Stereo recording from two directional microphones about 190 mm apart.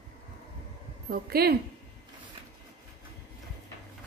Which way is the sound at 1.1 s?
55° right (ahead or behind).